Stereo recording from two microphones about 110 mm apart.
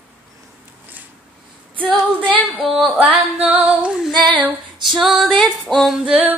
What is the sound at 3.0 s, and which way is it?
Female singing, 15° right (ahead or behind).